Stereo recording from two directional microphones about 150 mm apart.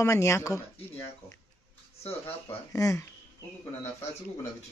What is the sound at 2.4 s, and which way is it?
Speech, 20° left (ahead or behind).